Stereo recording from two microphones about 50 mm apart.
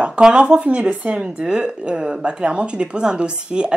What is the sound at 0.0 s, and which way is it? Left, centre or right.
Speech, right.